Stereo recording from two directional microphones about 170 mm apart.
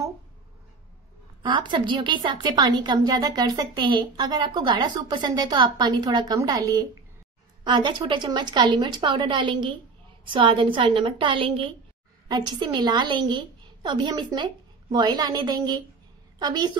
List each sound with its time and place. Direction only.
1.4 s a woman's voice: 25° right (ahead or behind)